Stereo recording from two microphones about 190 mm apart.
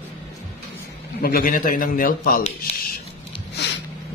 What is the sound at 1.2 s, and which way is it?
Speech, 50° left (ahead or behind).